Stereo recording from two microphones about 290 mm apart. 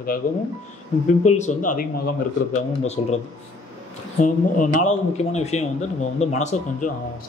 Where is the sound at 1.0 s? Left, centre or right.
Left.